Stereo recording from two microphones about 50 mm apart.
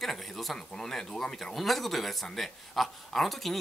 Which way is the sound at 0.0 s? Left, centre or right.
Centre.